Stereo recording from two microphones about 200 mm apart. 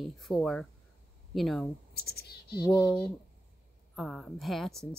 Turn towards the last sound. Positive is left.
turn(degrees=0)  # may be behind; listen again after turning